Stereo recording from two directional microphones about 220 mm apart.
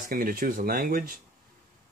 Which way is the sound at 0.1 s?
40° right (ahead or behind).